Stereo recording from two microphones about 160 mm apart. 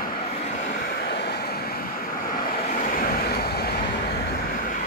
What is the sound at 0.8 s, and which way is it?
Vehicle, 80° left.